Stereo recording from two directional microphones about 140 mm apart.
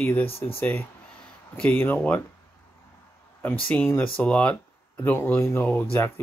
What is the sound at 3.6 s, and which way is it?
Speech, 15° left (ahead or behind).